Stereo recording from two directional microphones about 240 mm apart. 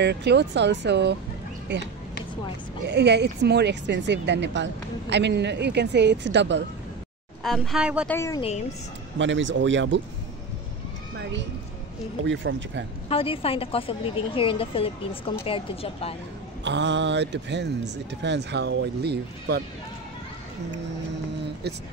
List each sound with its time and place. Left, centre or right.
0.0 s speech: right
2.9 s speech: right
7.4 s speech: centre
8.1 s speech: centre
8.4 s a woman's voice: left
9.2 s speech: right
12.3 s speech: right
13.1 s a woman's voice: left
16.6 s speech: right